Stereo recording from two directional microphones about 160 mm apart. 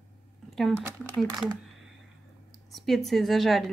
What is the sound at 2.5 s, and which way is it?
A woman's voice, centre (ahead or behind).